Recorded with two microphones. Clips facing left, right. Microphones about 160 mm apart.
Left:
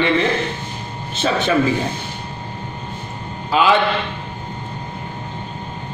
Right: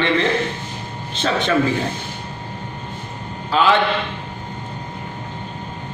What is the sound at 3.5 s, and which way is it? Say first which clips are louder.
Speech: left 1 dB; 10° left (ahead or behind).